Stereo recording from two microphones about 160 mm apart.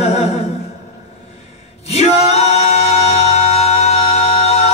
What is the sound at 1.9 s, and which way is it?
A capella, 40° left (ahead or behind).